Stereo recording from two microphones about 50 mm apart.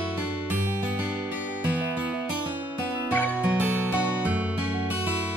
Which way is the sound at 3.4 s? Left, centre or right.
Right.